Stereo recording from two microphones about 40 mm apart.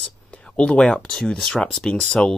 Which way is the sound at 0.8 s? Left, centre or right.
Centre.